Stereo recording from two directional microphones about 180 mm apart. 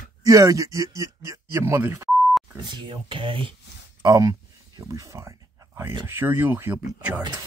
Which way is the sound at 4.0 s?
20° right (ahead or behind).